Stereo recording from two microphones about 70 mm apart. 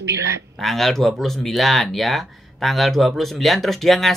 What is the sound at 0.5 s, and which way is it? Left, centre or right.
Speech, centre.